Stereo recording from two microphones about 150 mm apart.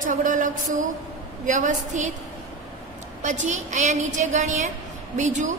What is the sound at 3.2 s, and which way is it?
A woman's voice, 55° right (ahead or behind).